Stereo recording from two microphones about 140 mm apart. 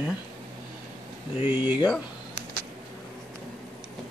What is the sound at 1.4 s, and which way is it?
Speech, 10° right (ahead or behind).